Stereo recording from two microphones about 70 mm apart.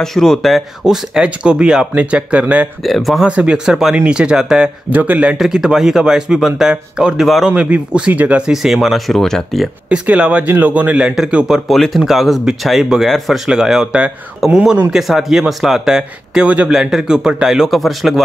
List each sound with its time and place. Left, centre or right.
0.0 s speech: centre; by 2.7 s right
2.8 s speech: centre
3.3 s speech: centre
4.9 s a man's voice: right
5.4 s a man's voice: centre
8.5 s speech: centre
9.8 s a man's voice: centre